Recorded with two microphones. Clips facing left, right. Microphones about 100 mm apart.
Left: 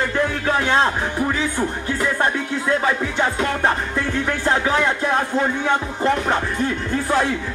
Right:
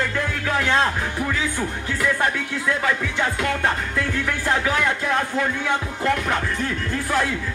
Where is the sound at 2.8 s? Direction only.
25° left (ahead or behind).